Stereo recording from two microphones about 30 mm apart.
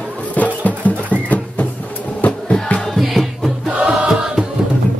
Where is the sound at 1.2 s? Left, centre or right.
Left.